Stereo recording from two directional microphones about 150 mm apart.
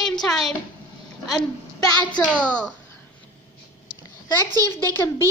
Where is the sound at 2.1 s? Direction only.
10° left (ahead or behind).